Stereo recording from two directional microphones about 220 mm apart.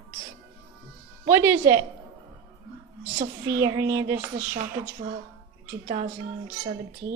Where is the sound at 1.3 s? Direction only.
10° right (ahead or behind).